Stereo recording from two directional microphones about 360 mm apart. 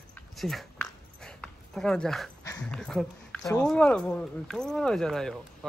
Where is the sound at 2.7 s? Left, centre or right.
Centre.